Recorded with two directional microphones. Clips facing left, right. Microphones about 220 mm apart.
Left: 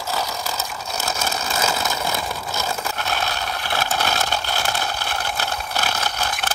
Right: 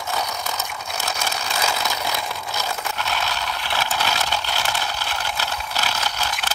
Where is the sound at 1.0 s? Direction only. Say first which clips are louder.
Left 2 dB; 45° left (ahead or behind).